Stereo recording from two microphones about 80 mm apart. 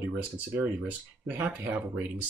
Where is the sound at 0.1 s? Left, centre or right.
Centre.